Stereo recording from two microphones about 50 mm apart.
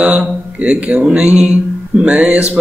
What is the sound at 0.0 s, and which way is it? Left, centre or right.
A man's voice, right.